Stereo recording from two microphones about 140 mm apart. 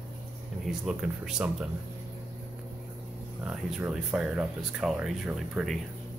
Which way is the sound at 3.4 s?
5° right (ahead or behind).